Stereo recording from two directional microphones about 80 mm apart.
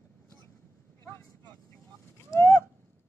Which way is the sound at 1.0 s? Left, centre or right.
Left.